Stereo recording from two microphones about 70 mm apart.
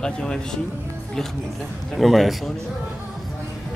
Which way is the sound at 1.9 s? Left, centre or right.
Centre.